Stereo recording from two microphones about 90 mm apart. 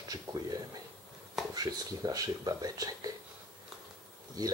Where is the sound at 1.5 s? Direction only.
45° right (ahead or behind).